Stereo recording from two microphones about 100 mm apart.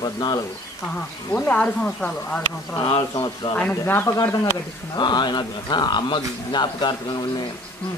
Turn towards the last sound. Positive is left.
turn(degrees=50)  # may be behind; listen again after turning